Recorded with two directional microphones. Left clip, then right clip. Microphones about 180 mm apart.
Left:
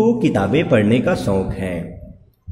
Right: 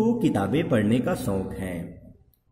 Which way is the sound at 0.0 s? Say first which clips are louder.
Left 7 dB; 15° right (ahead or behind).